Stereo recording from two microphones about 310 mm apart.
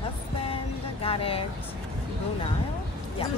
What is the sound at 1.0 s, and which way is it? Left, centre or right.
Speech, centre.